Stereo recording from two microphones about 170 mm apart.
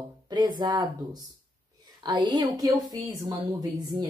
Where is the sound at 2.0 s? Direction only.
25° right (ahead or behind).